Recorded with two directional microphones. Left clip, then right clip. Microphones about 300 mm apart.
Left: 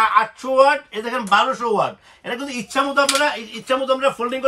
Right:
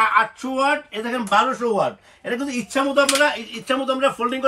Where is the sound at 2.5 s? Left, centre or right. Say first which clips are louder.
Left 3 dB; centre.